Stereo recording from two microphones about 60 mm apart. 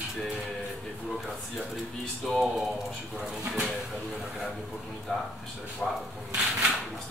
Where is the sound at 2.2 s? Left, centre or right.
Centre.